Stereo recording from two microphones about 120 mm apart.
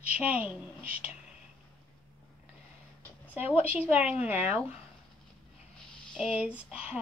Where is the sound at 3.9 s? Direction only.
10° right (ahead or behind).